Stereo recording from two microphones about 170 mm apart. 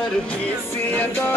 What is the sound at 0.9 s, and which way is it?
Music, 10° left (ahead or behind).